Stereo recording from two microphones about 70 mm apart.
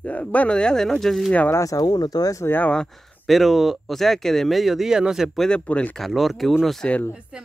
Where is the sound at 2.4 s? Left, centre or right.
Left.